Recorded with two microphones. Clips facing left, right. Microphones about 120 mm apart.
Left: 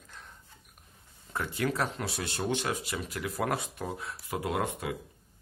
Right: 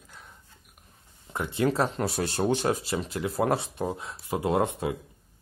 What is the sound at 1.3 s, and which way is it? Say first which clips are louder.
Speech: right 5 dB; 20° right (ahead or behind).